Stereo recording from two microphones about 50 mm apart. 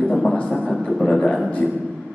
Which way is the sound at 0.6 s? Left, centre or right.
Centre.